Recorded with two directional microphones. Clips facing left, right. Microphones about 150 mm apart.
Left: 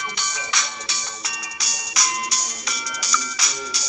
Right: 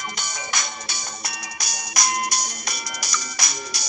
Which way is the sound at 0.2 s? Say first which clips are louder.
Even; 50° right (ahead or behind).